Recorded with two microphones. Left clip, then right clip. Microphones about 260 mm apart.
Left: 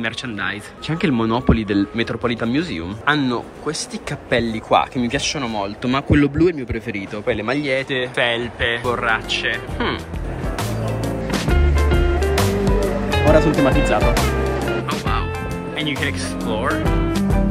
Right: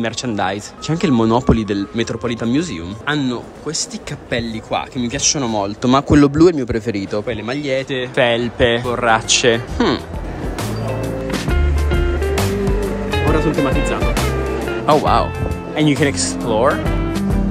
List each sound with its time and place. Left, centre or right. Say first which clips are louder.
0.0 s speech: right 4 dB; centre
7.2 s speech: left 1 dB; centre
11.2 s music: even; centre
14.9 s speech: right 11 dB; centre
15.8 s speech: right 7 dB; right
16.6 s speech: right 4 dB; centre